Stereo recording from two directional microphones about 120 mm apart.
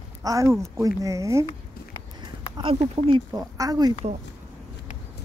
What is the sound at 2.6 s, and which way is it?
Speech, 45° right (ahead or behind).